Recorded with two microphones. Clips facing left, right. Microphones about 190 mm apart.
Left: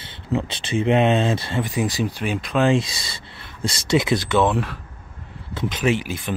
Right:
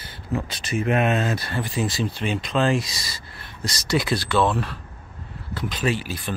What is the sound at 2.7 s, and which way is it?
Speech, 25° left (ahead or behind).